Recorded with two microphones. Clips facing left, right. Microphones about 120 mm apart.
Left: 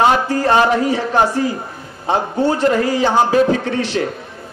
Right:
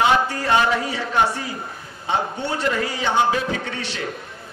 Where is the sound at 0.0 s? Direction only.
40° left (ahead or behind).